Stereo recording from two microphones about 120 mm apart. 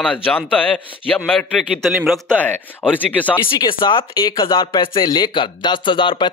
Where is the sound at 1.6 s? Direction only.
Centre (ahead or behind).